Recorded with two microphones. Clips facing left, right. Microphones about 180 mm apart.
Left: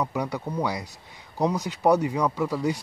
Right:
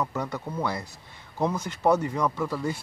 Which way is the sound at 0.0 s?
15° left (ahead or behind).